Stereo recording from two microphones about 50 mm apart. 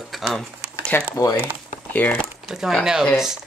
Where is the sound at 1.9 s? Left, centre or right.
Left.